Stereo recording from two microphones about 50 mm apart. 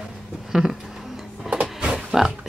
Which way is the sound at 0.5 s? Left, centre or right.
Centre.